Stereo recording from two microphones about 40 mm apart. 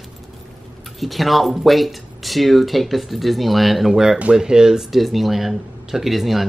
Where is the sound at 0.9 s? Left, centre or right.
Centre.